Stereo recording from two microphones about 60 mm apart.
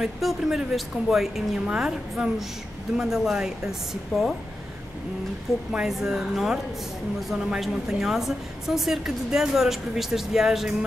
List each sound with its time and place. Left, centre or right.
0.0 s a woman's voice: centre
5.7 s a woman's voice: centre